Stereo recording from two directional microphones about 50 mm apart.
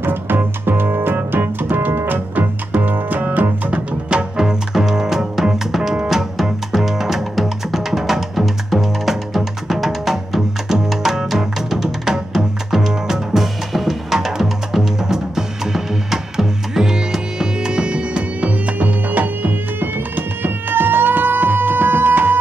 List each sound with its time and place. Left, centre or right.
0.0 s music: right
4.1 s double bass: centre
6.0 s music: centre; by 22.4 s right